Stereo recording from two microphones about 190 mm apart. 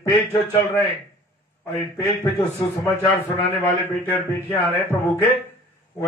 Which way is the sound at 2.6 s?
15° left (ahead or behind).